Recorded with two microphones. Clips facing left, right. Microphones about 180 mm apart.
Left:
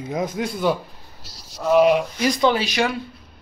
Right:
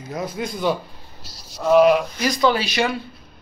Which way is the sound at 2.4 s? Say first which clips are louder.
Right 1 dB; 20° left (ahead or behind).